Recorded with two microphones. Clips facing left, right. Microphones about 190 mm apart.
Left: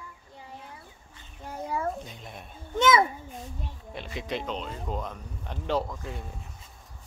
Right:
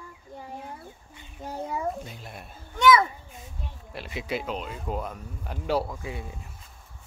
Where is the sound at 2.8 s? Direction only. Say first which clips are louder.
Right 2 dB; 25° left (ahead or behind).